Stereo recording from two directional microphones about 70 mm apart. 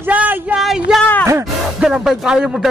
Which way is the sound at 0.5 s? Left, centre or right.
Centre.